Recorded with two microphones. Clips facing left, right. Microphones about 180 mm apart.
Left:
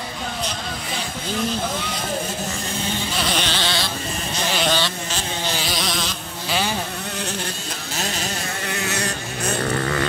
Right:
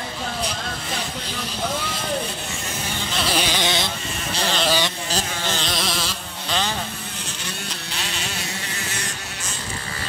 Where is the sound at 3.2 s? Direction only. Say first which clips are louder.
Right 3 dB; 5° right (ahead or behind).